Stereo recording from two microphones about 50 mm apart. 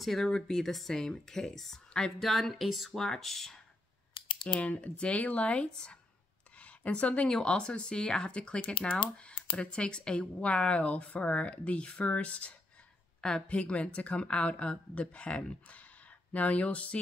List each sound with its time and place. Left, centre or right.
0.0 s speech: centre
4.6 s speech: left
6.6 s speech: left
7.2 s speech: centre
8.5 s speech: left
8.9 s speech: centre